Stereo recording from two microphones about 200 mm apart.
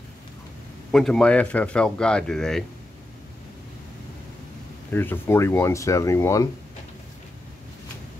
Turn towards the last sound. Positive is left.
turn(degrees=15)  # may be behind; listen again after turning